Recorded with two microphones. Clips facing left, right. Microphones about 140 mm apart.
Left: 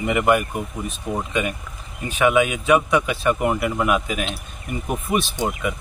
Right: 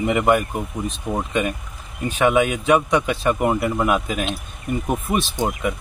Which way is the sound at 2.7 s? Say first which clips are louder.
Right 1 dB; 5° left (ahead or behind).